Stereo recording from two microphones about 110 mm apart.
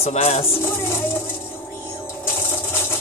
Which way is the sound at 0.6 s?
20° left (ahead or behind).